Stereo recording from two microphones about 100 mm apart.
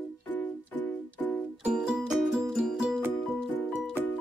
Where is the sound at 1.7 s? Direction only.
10° right (ahead or behind).